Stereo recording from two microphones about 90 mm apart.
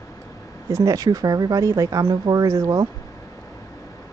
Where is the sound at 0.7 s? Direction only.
35° right (ahead or behind).